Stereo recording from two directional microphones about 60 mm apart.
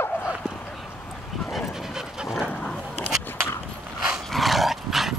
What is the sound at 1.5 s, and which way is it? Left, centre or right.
Dog, centre.